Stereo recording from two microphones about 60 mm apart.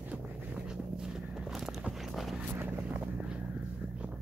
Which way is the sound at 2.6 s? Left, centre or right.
Right.